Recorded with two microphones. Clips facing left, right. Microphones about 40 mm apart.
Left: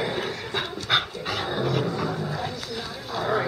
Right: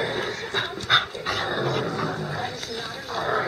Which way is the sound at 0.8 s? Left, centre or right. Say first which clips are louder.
Right 3 dB; centre.